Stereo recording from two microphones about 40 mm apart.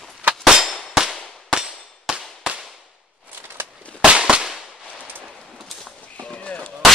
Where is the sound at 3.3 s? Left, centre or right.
Right.